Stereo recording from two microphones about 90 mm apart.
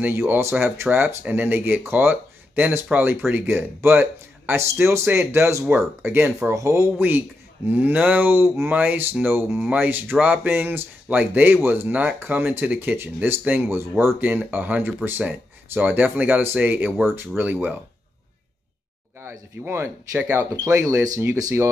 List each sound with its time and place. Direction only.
0.0 s speech: 25° right (ahead or behind)
19.1 s speech: 30° right (ahead or behind)